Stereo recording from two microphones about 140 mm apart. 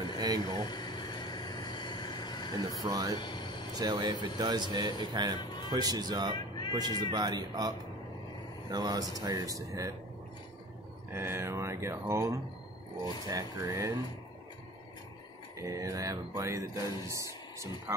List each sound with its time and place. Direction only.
0.7 s vehicle: 30° left (ahead or behind)
2.8 s speech: 25° right (ahead or behind)
3.2 s air conditioning: 30° left (ahead or behind)
3.7 s speech: 30° right (ahead or behind)
11.1 s speech: 15° right (ahead or behind)
15.6 s speech: 25° right (ahead or behind)